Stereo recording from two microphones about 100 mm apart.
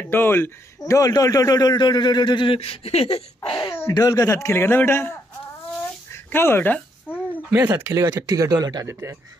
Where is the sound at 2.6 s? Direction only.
85° left.